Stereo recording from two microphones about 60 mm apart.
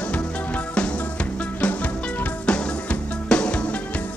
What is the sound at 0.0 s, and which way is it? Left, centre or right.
Music, left.